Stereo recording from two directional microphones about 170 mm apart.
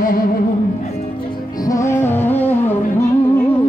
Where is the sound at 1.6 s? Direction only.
20° left (ahead or behind).